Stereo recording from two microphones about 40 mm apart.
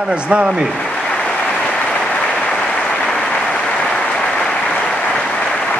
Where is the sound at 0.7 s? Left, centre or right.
Left.